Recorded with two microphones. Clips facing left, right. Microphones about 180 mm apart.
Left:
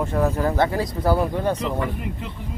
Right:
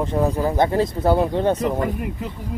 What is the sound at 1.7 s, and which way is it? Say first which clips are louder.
Speech: right 3 dB; 40° right (ahead or behind).